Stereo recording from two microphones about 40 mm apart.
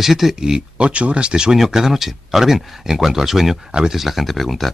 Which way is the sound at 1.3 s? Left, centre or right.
Centre.